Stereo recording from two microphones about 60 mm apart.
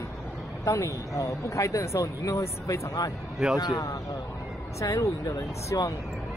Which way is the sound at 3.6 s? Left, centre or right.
Left.